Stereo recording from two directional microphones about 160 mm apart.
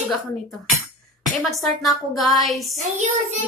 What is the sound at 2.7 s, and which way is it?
Speech, 50° right (ahead or behind).